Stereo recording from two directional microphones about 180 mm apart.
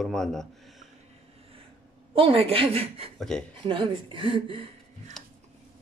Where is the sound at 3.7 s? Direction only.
30° right (ahead or behind).